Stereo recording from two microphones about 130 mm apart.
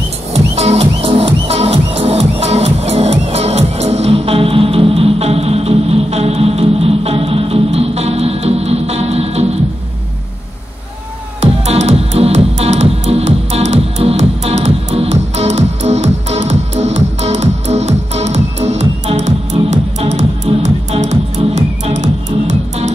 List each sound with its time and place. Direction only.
0.3 s music: 55° right (ahead or behind)
11.6 s music: 55° right (ahead or behind)